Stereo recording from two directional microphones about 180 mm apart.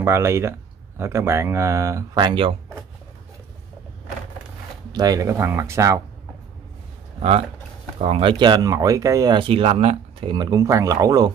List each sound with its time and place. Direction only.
0.0 s speech: 15° right (ahead or behind)
4.9 s speech: 20° right (ahead or behind)
7.2 s speech: 35° right (ahead or behind)
10.3 s speech: 20° right (ahead or behind)